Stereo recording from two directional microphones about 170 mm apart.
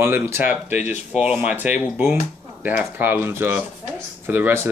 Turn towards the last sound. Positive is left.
turn(degrees=-15)  # may be behind; listen again after turning